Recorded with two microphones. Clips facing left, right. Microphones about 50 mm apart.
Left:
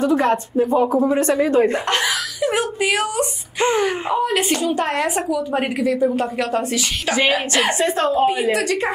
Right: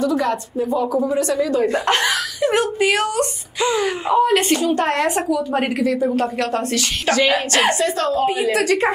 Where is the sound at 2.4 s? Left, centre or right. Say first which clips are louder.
Right 2 dB; centre.